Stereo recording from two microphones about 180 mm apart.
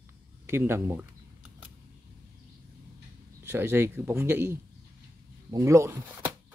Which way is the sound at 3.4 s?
15° right (ahead or behind).